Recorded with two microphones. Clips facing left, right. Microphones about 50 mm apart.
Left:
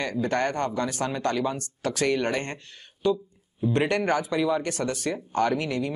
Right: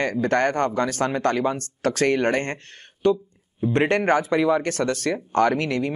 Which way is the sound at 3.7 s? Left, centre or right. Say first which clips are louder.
Right 5 dB; right.